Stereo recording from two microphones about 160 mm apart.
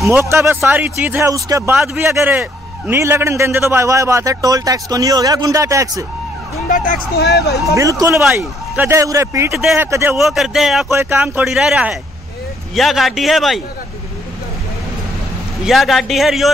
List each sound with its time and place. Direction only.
0.0 s a man's voice: 15° right (ahead or behind)
6.7 s speech: 55° left (ahead or behind); by 7.5 s 90° left
7.7 s a man's voice: 20° right (ahead or behind)
9.5 s a man's voice: centre (ahead or behind)
9.8 s speech: 15° right (ahead or behind)
10.1 s a man's voice: centre (ahead or behind)
10.9 s a man's voice: 15° right (ahead or behind); by 13.6 s centre (ahead or behind)
15.6 s a man's voice: centre (ahead or behind)